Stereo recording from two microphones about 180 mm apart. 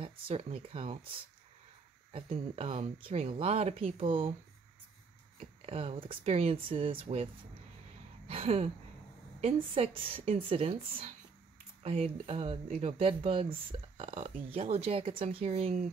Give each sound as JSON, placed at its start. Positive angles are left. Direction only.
{"t": 0.0, "sound": "speech", "side_deg": -35}
{"t": 2.1, "sound": "speech", "side_deg": -35}
{"t": 5.7, "sound": "speech", "side_deg": -35}
{"t": 8.3, "sound": "speech", "side_deg": -35}